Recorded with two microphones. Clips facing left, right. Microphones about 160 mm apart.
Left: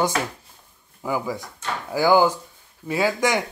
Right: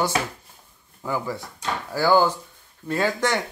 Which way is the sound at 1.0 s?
10° left (ahead or behind).